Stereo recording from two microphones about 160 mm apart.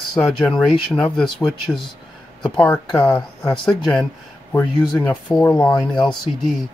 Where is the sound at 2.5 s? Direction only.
10° left (ahead or behind).